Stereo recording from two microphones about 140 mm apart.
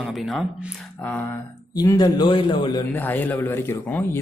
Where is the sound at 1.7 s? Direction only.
30° left (ahead or behind).